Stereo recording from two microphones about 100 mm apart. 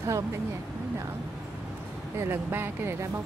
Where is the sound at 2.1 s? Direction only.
25° right (ahead or behind).